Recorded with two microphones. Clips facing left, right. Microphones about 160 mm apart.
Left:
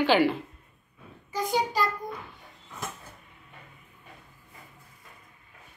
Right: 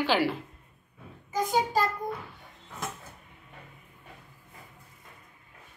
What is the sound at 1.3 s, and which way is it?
Speech, 45° right (ahead or behind).